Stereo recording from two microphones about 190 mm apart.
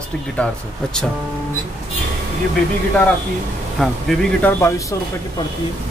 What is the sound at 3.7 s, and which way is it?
Speech, centre (ahead or behind).